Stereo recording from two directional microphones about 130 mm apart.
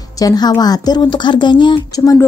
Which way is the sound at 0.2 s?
30° left (ahead or behind).